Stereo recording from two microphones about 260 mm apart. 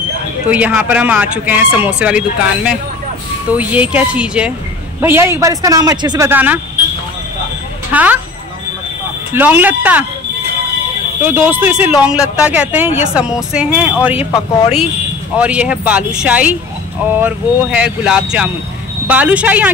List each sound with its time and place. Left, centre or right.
0.5 s a man's voice: centre
7.9 s speech: centre
9.3 s a man's voice: centre
11.2 s speech: centre
15.3 s speech: centre